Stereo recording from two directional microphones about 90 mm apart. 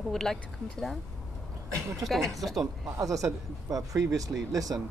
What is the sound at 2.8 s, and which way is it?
Speech, 40° right (ahead or behind).